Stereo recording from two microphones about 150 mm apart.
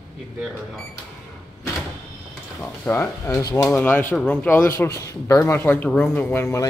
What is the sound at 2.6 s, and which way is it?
Speech, 10° left (ahead or behind).